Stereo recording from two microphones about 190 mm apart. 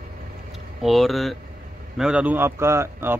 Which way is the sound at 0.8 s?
Centre (ahead or behind).